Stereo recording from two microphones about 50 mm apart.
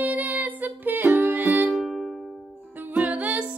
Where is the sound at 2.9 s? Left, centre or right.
Right.